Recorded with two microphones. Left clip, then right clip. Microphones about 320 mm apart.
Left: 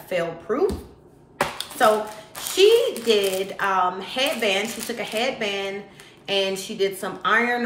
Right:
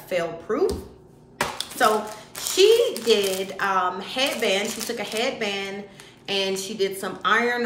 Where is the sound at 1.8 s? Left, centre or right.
Centre.